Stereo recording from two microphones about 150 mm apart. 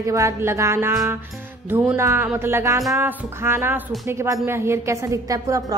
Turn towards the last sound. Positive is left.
turn(degrees=-20)  # may be behind; listen again after turning